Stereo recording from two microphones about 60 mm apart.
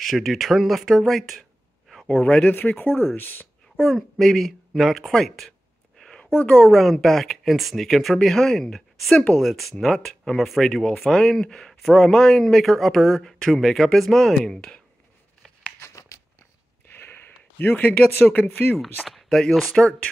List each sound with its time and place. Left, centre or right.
0.0 s speech: centre
2.1 s speech: centre
2.8 s speech: left
3.8 s speech: centre
5.9 s a sound: centre
6.3 s speech: left
6.6 s speech: centre
15.8 s tearing: left
16.9 s speech: left
19.2 s speech: centre